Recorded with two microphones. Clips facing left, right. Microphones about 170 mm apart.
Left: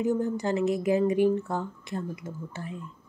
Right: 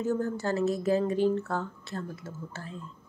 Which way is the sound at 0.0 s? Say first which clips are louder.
Left 3 dB; 15° left (ahead or behind).